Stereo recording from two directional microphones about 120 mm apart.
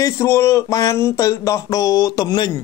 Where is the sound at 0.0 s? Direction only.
25° left (ahead or behind).